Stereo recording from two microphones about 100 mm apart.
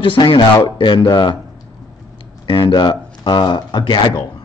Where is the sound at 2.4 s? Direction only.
50° left (ahead or behind).